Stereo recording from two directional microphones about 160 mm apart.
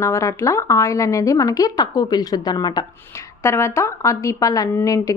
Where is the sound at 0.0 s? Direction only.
20° left (ahead or behind).